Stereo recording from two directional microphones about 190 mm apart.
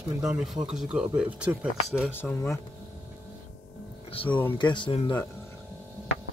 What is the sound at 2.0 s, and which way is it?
Speech, 10° left (ahead or behind).